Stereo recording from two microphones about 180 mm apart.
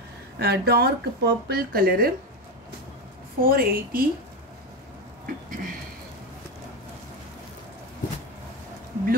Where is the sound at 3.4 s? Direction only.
55° right (ahead or behind).